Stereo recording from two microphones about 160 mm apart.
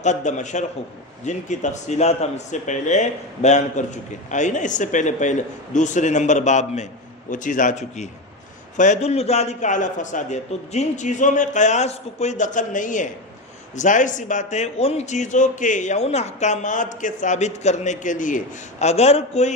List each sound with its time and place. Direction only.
0.0 s a man's voice: 50° left (ahead or behind)